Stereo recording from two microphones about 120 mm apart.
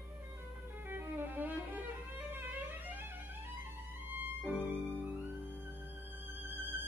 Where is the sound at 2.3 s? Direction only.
15° right (ahead or behind).